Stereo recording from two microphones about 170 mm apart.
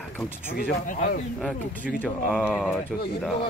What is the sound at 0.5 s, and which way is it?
Speech, 55° left (ahead or behind).